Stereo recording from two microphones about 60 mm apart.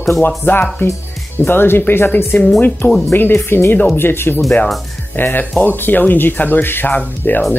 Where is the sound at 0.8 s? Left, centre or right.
Left.